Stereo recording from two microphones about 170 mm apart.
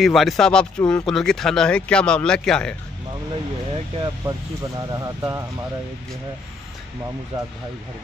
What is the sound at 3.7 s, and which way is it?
Speech, 25° right (ahead or behind).